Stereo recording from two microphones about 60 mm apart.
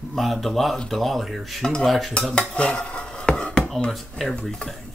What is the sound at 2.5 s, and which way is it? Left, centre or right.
Dishes, centre.